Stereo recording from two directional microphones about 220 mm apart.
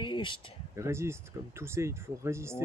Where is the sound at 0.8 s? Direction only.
10° right (ahead or behind).